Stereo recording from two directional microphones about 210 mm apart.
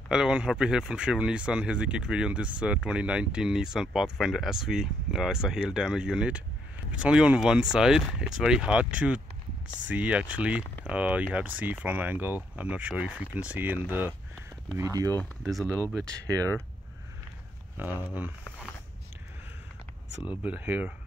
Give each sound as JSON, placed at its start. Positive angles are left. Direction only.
{"t": 0.1, "sound": "speech", "side_deg": -5}
{"t": 15.9, "sound": "speech", "side_deg": 5}
{"t": 16.2, "sound": "speech", "side_deg": -15}
{"t": 17.7, "sound": "speech", "side_deg": -10}
{"t": 20.4, "sound": "speech", "side_deg": -10}